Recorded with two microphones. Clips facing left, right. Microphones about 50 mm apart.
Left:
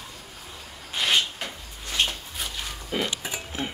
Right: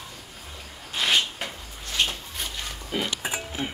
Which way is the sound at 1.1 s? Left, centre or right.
Centre.